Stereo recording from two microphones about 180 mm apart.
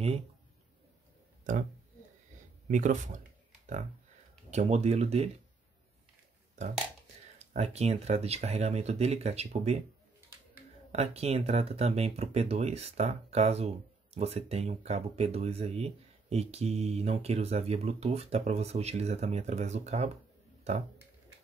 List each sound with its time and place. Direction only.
1.5 s speech: 45° right (ahead or behind)
2.7 s speech: 45° right (ahead or behind)
4.5 s speech: 40° right (ahead or behind)
7.3 s speech: 35° right (ahead or behind)
10.9 s speech: 35° right (ahead or behind)